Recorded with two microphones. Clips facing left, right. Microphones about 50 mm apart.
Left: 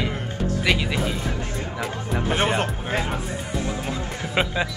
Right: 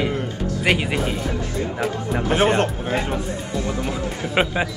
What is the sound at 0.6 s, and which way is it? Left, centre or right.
Music, right.